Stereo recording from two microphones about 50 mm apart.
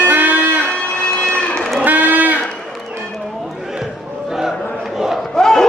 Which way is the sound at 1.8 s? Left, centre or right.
Right.